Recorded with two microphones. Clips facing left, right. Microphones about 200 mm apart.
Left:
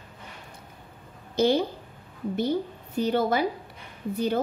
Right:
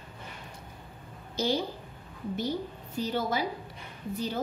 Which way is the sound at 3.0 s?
60° left (ahead or behind).